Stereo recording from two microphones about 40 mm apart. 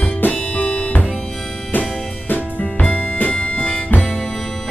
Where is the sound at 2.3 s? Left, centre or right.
Left.